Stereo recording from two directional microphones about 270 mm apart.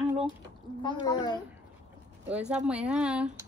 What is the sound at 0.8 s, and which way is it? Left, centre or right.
Speech, centre.